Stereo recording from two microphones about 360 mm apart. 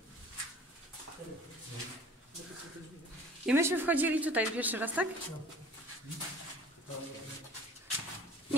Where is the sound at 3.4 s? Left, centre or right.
Centre.